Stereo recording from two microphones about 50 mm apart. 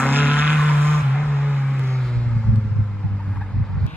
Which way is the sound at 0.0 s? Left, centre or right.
Right.